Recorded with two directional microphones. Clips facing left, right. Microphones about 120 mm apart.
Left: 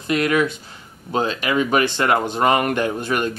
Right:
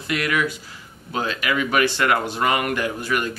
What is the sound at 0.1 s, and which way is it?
Speech, 30° left (ahead or behind).